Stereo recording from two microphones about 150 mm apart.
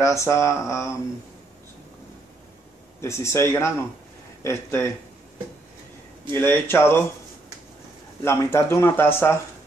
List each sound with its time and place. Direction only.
0.2 s a man's voice: 20° left (ahead or behind)
3.0 s a man's voice: 20° left (ahead or behind)
6.3 s speech: 15° left (ahead or behind)
8.2 s speech: 15° left (ahead or behind)